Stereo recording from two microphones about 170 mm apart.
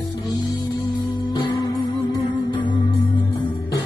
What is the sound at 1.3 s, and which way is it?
Music, 25° left (ahead or behind).